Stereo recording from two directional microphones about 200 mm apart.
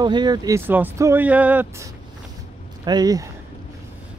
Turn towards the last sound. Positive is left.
turn(degrees=-20)  # may be behind; listen again after turning